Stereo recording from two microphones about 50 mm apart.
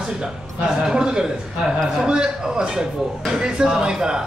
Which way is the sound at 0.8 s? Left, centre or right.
Centre.